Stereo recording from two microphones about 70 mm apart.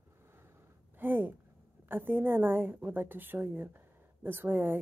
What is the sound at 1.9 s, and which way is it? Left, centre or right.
A woman's voice, right.